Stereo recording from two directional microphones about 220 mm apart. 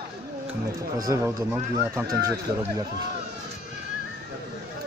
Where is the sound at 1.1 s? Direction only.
10° right (ahead or behind).